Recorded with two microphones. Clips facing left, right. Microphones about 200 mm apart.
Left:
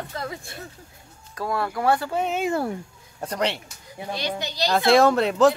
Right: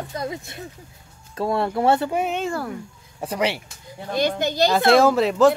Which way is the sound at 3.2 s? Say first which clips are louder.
Right 2 dB; 5° right (ahead or behind).